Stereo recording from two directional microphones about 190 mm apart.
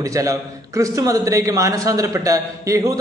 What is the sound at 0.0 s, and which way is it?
A man's voice, 15° right (ahead or behind).